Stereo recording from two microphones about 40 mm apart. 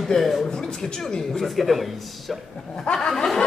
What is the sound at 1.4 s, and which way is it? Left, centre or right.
Speech, centre.